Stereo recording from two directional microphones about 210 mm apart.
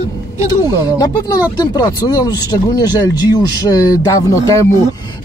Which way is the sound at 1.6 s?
15° left (ahead or behind).